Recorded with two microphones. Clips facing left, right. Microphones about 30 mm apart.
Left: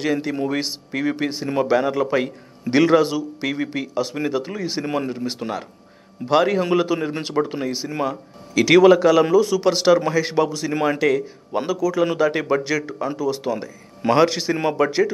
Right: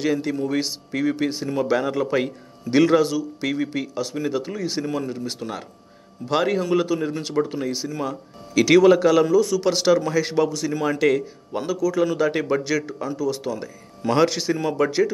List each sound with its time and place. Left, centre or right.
0.0 s a man's voice: centre
4.8 s speech: left
5.1 s a man's voice: centre
6.7 s speech: left
7.6 s a man's voice: centre
7.9 s speech: left
8.7 s a man's voice: centre
10.7 s speech: left
11.0 s a man's voice: centre
11.5 s a man's voice: centre
13.0 s speech: left
14.1 s a man's voice: centre